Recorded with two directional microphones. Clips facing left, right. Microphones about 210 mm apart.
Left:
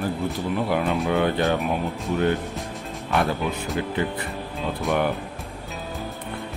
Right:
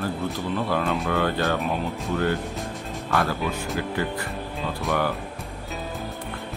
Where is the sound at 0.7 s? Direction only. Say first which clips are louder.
Left 3 dB; 15° left (ahead or behind).